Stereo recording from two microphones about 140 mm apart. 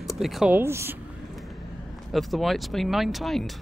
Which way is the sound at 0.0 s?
Centre (ahead or behind).